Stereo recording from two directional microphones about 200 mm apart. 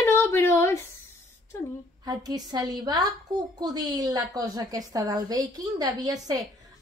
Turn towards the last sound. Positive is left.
turn(degrees=-20)  # may be behind; listen again after turning